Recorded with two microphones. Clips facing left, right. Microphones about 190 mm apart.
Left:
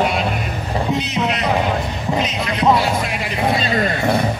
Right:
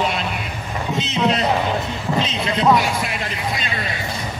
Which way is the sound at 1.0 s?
25° right (ahead or behind).